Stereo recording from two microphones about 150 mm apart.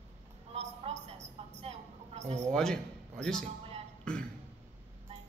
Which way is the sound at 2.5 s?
5° left (ahead or behind).